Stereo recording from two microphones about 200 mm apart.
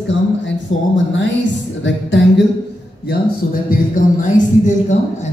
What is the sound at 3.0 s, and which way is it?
Speech, 45° left (ahead or behind).